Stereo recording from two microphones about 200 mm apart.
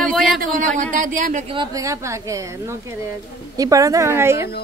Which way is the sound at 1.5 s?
20° right (ahead or behind).